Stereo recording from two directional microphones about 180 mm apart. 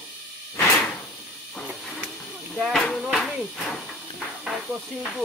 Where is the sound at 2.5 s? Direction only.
Centre (ahead or behind).